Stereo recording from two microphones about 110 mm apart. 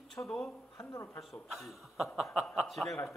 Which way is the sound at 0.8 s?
30° left (ahead or behind).